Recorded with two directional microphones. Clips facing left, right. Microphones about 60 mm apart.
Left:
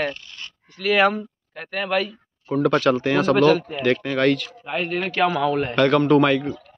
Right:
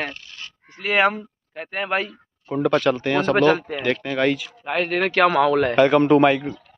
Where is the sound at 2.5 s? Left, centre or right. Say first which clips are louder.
Left 1 dB; centre.